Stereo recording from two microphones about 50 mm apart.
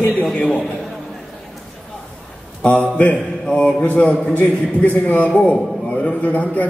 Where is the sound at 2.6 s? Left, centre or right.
Left.